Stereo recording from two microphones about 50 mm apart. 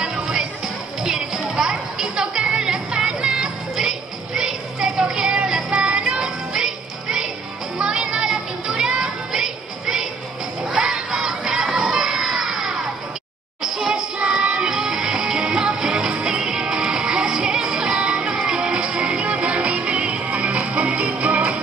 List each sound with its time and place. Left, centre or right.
0.0 s music: centre
10.6 s crowd: centre
13.6 s a sound: centre
14.1 s music: right